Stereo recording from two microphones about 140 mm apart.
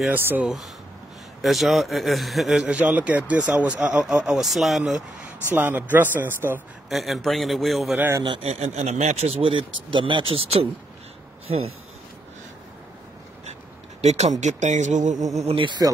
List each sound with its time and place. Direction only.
0.1 s a man's voice: 10° right (ahead or behind)
5.6 s a man's voice: 15° right (ahead or behind)
6.9 s a man's voice: centre (ahead or behind)
8.2 s speech: 35° right (ahead or behind)
8.5 s speech: 50° right (ahead or behind)
14.0 s speech: 55° right (ahead or behind)
15.3 s speech: 45° right (ahead or behind)